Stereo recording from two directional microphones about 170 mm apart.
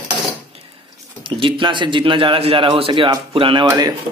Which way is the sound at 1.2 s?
30° right (ahead or behind).